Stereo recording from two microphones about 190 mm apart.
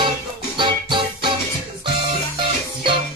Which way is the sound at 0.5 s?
25° right (ahead or behind).